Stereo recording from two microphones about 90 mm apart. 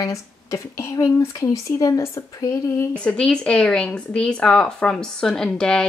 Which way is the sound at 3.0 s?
10° left (ahead or behind).